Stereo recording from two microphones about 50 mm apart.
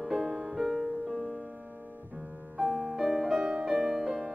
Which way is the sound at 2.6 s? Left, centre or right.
Centre.